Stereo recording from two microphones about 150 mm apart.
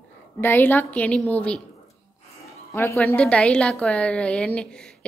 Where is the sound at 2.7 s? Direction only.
20° left (ahead or behind).